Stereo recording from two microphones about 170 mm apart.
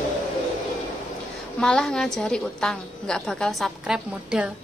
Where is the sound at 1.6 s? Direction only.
5° left (ahead or behind).